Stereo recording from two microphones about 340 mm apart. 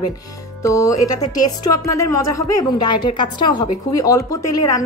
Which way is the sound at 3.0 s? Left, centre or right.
Centre.